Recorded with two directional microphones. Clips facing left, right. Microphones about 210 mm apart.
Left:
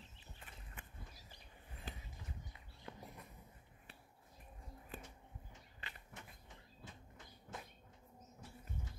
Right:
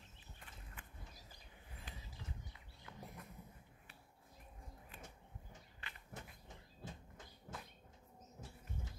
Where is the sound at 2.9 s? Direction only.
30° left (ahead or behind).